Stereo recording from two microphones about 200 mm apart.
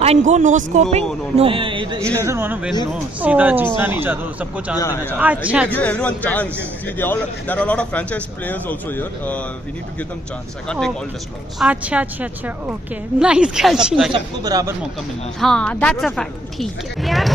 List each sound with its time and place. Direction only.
0.0 s speech: 35° right (ahead or behind)
2.1 s a woman's voice: 15° right (ahead or behind)
4.7 s speech: 15° left (ahead or behind)
5.1 s a woman's voice: 10° right (ahead or behind)
5.7 s speech: 5° left (ahead or behind)
10.7 s speech: 5° left (ahead or behind)
11.6 s a woman's voice: 5° right (ahead or behind)
14.1 s speech: 20° right (ahead or behind)
15.4 s speech: 5° left (ahead or behind)